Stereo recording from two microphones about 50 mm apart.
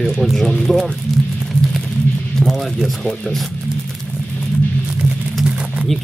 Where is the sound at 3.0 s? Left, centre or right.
Centre.